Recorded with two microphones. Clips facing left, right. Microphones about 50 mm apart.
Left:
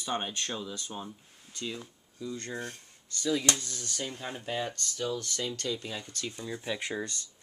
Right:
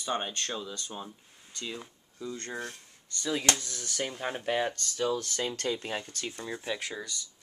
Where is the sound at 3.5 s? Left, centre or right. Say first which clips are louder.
Right 2 dB; right.